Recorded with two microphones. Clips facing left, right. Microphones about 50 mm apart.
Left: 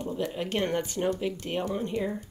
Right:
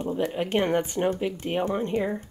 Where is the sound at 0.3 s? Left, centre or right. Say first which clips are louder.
Right 5 dB; right.